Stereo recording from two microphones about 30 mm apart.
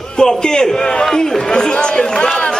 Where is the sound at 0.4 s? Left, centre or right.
Left.